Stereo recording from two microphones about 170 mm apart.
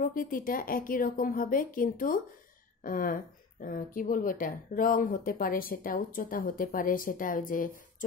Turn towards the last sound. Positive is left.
turn(degrees=55)  # may be behind; listen again after turning